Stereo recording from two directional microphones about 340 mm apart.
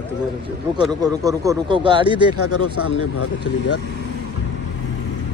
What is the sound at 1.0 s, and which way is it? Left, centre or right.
Speech, centre.